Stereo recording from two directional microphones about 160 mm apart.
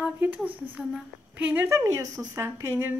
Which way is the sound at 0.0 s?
10° right (ahead or behind).